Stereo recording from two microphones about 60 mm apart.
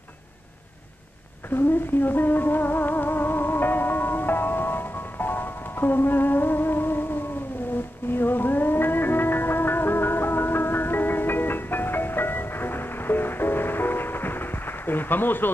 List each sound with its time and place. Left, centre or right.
1.5 s music: left
8.1 s music: left